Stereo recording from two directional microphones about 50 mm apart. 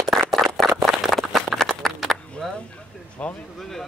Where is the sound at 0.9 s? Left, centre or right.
Centre.